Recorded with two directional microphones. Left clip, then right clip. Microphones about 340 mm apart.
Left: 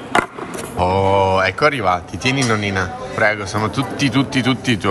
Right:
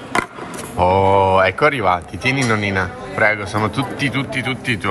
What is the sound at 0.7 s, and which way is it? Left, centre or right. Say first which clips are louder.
Speech: right 2 dB; centre.